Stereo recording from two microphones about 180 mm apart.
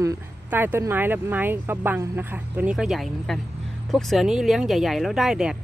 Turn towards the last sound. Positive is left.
turn(degrees=-5)  # may be behind; listen again after turning